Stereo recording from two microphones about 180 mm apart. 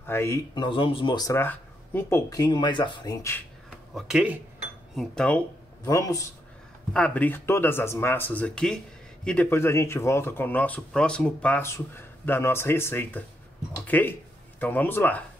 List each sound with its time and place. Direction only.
0.0 s speech: 15° left (ahead or behind)
3.7 s speech: 5° right (ahead or behind)
5.9 s speech: 20° left (ahead or behind)
6.9 s speech: 5° left (ahead or behind)